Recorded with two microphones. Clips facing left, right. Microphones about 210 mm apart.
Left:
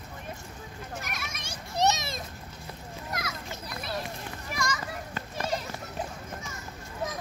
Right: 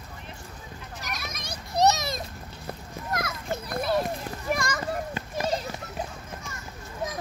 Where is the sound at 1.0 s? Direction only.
35° right (ahead or behind).